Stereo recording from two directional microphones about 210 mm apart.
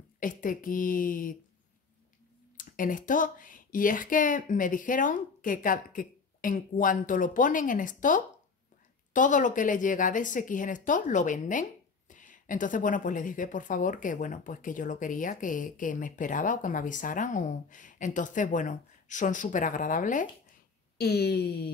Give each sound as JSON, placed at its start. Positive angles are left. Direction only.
{"t": 0.2, "sound": "speech", "side_deg": 40}
{"t": 2.5, "sound": "speech", "side_deg": 40}
{"t": 21.0, "sound": "speech", "side_deg": 50}